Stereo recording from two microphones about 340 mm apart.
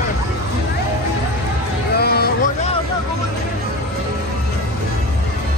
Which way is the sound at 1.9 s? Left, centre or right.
Left.